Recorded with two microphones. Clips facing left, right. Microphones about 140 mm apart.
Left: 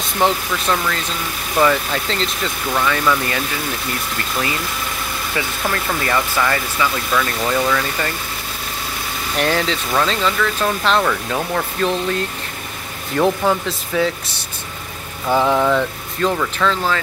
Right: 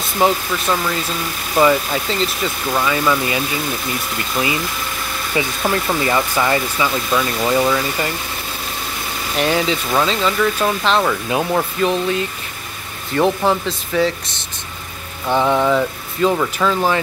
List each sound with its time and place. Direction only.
0.2 s speech: 10° right (ahead or behind)
1.6 s speech: 10° right (ahead or behind)
5.3 s speech: 15° right (ahead or behind)
9.4 s speech: 5° right (ahead or behind)
11.1 s speech: 15° right (ahead or behind)
15.2 s speech: centre (ahead or behind)